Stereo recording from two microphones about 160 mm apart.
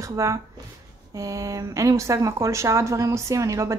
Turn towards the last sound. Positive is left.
turn(degrees=-20)  # may be behind; listen again after turning